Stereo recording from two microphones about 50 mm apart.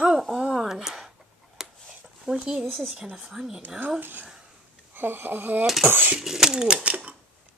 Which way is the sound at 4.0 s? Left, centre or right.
Right.